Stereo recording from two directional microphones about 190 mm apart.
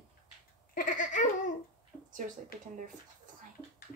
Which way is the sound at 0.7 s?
45° left (ahead or behind).